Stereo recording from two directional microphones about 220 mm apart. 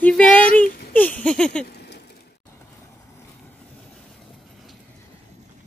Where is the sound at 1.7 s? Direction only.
50° left (ahead or behind).